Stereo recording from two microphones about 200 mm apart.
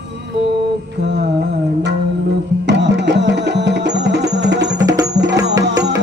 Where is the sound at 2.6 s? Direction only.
60° right (ahead or behind).